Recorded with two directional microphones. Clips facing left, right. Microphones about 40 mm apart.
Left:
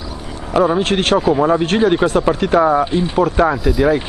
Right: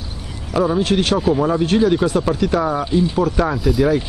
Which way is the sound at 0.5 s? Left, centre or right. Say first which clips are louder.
Left 3 dB; left.